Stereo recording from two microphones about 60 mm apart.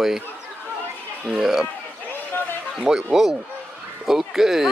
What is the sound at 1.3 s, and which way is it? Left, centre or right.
Speech, centre.